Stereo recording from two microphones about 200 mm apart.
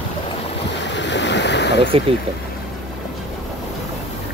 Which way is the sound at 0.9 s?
60° left (ahead or behind).